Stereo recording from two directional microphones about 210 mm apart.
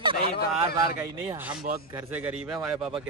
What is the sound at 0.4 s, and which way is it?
Speech, 50° left (ahead or behind).